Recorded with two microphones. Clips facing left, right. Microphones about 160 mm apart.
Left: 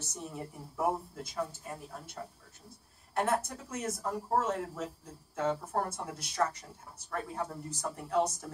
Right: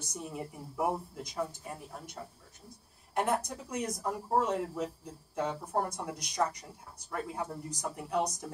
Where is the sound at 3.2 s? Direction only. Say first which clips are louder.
Even; 15° right (ahead or behind).